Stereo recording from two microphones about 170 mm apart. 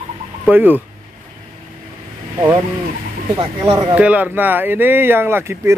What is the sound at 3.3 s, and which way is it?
Speech, 25° right (ahead or behind).